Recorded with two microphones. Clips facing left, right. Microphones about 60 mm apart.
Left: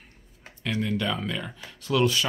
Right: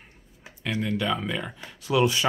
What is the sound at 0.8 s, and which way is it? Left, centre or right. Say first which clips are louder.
Speech: right 2 dB; centre.